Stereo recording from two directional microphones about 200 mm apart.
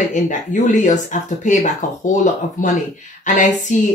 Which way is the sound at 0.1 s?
40° left (ahead or behind).